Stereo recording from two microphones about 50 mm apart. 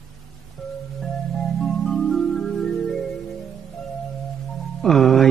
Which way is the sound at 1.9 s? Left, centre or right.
Centre.